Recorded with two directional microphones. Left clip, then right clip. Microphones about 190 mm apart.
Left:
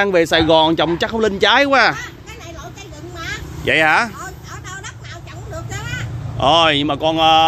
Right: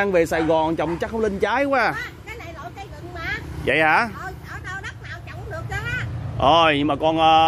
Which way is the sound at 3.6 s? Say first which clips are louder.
Left 4 dB; centre (ahead or behind).